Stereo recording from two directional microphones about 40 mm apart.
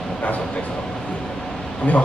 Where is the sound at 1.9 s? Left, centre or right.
Left.